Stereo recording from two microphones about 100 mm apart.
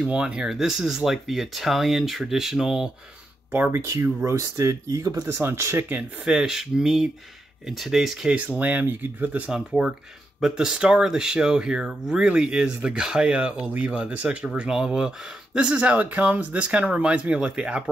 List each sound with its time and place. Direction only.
0.0 s speech: 10° right (ahead or behind)
3.5 s speech: 20° right (ahead or behind)
6.2 s speech: 5° right (ahead or behind)
9.5 s speech: 5° right (ahead or behind)